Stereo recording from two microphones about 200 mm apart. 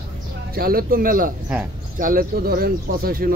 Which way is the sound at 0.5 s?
50° right (ahead or behind).